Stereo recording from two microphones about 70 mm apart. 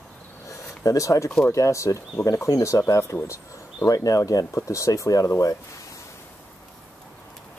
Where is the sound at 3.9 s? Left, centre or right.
Left.